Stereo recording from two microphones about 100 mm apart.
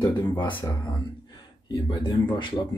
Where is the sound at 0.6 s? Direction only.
35° left (ahead or behind).